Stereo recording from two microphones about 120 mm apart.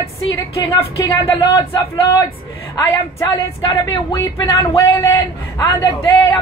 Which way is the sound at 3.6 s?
25° left (ahead or behind).